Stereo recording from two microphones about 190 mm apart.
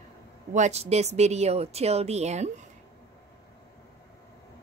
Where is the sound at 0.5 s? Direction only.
35° right (ahead or behind).